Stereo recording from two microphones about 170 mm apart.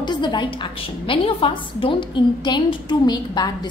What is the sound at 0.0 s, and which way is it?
A woman's voice, 25° left (ahead or behind).